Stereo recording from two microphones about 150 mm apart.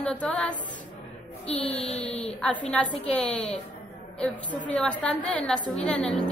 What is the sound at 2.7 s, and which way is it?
Speech, 5° left (ahead or behind).